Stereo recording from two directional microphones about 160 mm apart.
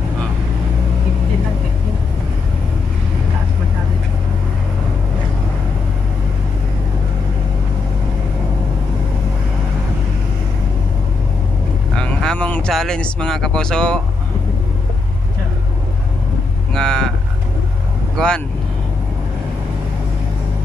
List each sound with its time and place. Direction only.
11.9 s a sound: 5° left (ahead or behind)
16.7 s cattle: 5° left (ahead or behind)
18.1 s speech: 5° left (ahead or behind)